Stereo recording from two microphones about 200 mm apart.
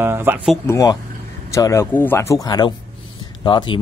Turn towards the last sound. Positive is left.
turn(degrees=25)  # may be behind; listen again after turning